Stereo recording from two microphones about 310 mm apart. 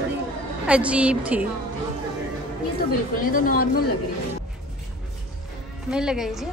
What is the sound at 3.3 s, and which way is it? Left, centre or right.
Speech, left.